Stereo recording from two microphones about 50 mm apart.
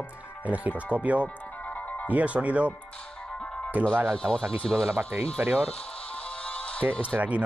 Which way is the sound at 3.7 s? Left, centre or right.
Right.